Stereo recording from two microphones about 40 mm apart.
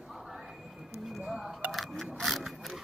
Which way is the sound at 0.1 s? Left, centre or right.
Centre.